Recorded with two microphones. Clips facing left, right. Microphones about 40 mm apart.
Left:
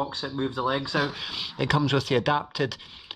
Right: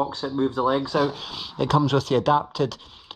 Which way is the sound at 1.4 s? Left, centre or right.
Left.